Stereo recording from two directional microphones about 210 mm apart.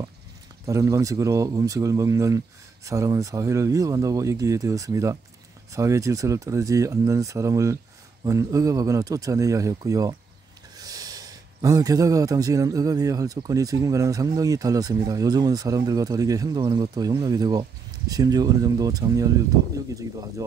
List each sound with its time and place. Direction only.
0.7 s speech: 15° right (ahead or behind)